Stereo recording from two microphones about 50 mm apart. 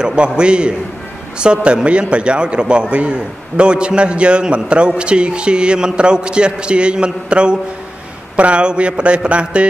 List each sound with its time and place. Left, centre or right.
0.0 s a man's voice: centre